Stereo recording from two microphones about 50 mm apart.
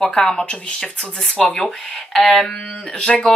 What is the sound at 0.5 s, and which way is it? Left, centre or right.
Speech, centre.